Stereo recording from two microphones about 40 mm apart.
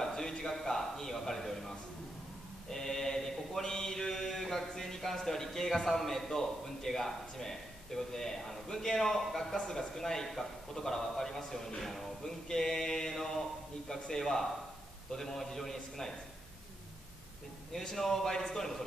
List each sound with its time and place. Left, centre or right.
0.0 s a sound: centre
0.3 s mantra: centre
17.7 s mantra: centre